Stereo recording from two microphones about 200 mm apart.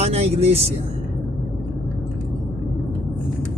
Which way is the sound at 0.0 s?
30° right (ahead or behind).